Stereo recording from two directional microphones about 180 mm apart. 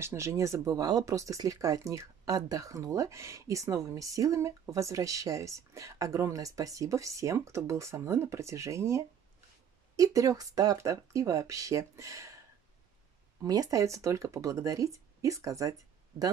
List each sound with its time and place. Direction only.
0.0 s speech: 15° right (ahead or behind)
13.4 s speech: 20° right (ahead or behind)